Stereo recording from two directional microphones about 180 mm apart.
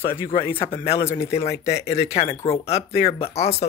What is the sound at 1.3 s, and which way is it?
Speech, 35° left (ahead or behind).